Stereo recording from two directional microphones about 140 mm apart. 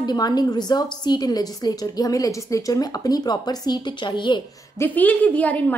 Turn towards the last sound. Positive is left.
turn(degrees=10)  # may be behind; listen again after turning